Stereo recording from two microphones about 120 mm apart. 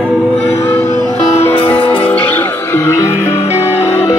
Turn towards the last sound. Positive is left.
turn(degrees=-15)  # may be behind; listen again after turning